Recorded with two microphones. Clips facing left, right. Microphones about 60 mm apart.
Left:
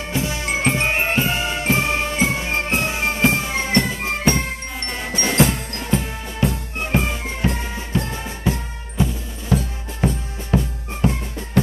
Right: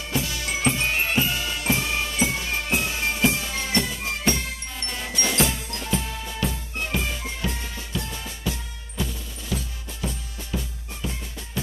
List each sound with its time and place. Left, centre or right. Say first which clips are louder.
0.1 s music: left 4 dB; left
10.0 s music: left 10 dB; left